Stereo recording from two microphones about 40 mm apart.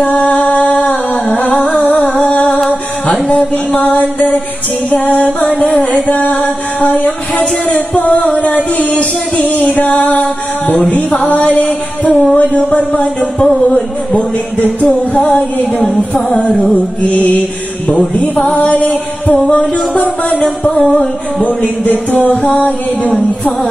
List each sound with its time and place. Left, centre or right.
0.0 s music: left
1.6 s a sound: left
2.2 s music: left
5.6 s music: left
7.0 s a sound: left
8.7 s music: left
12.4 s speech: left
14.6 s music: left
18.6 s music: left